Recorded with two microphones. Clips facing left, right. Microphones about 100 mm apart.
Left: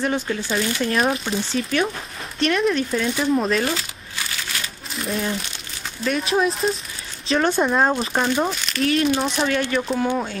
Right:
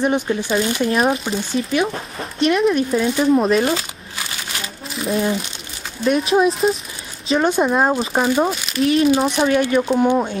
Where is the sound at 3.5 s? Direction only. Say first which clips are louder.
Right 5 dB; 30° right (ahead or behind).